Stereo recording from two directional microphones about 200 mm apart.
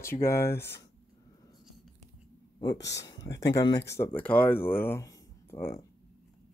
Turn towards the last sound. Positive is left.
turn(degrees=10)  # may be behind; listen again after turning